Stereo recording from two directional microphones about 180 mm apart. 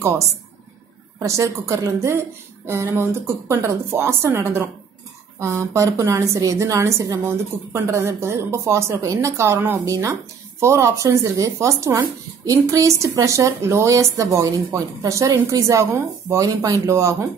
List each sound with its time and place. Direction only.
1.2 s speech: 15° right (ahead or behind)